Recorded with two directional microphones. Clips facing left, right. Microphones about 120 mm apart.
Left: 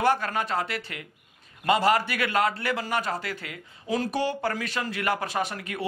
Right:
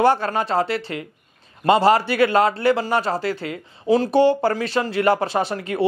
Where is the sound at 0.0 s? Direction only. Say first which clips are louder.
Right 6 dB; 30° right (ahead or behind).